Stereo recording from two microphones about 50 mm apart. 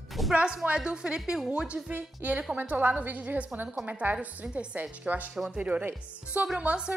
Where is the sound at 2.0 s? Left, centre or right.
Right.